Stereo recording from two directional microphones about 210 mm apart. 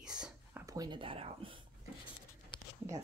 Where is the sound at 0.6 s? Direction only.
15° right (ahead or behind).